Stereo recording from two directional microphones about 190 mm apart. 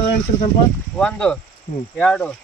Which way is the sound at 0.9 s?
5° left (ahead or behind).